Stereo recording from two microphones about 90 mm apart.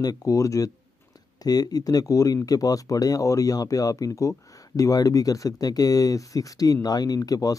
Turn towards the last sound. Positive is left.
turn(degrees=45)  # may be behind; listen again after turning